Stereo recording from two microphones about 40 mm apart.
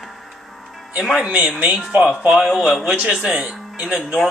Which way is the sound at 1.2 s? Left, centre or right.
Right.